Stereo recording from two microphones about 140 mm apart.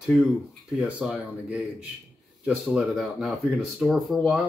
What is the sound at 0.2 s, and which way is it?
Speech, 5° right (ahead or behind).